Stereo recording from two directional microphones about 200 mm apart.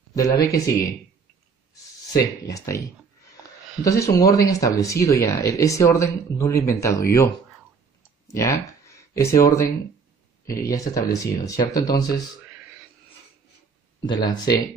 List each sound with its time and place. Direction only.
0.1 s speech: 15° left (ahead or behind)
2.4 s speech: 15° left (ahead or behind)
8.3 s speech: 15° left (ahead or behind)
14.0 s speech: 20° left (ahead or behind)